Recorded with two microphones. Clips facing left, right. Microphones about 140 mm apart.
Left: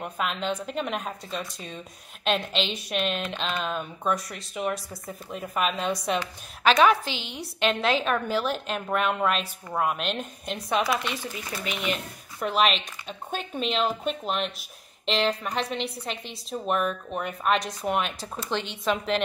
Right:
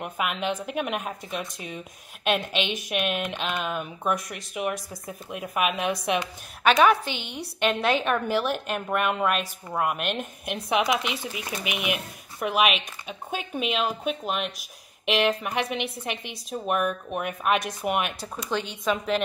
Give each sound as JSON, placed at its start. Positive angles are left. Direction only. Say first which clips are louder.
{"t": 0.0, "sound": "a woman's voice", "louder": "right 1 dB", "side_deg": -10}
{"t": 7.2, "sound": "a woman's voice", "louder": "right 1 dB", "side_deg": -60}
{"t": 7.6, "sound": "a woman's voice", "louder": "right 1 dB", "side_deg": 0}
{"t": 18.3, "sound": "a woman's voice", "louder": "right 1 dB", "side_deg": 0}